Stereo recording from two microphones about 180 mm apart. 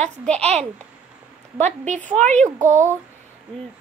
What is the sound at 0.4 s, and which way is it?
Speech, 35° right (ahead or behind).